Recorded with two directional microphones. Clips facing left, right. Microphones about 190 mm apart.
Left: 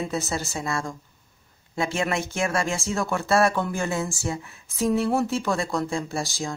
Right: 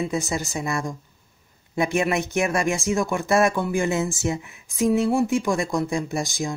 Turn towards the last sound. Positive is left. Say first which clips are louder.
# right 3 dB
turn(degrees=-15)  # may be behind; listen again after turning